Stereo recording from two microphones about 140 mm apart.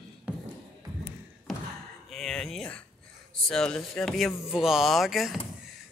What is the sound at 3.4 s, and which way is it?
Speech, 5° left (ahead or behind).